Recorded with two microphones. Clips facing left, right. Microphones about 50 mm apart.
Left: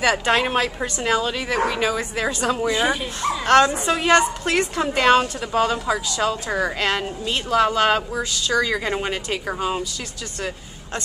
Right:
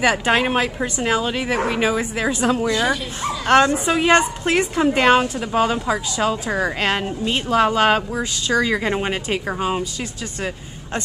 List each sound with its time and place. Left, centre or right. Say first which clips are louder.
0.0 s a woman's voice: right 2 dB; centre
2.6 s speech: right 1 dB; centre
3.2 s a woman's voice: even; centre